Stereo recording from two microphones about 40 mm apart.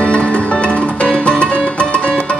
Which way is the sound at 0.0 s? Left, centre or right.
Left.